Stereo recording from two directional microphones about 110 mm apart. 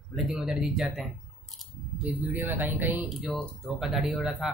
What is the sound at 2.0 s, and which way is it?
Speech, 15° right (ahead or behind).